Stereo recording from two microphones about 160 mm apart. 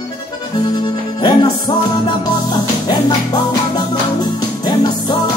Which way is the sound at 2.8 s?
25° left (ahead or behind).